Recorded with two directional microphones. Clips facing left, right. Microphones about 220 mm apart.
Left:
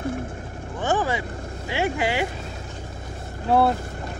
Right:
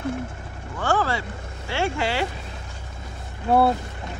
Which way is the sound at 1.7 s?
15° left (ahead or behind).